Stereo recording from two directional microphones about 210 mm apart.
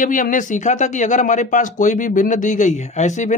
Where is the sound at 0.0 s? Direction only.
40° left (ahead or behind).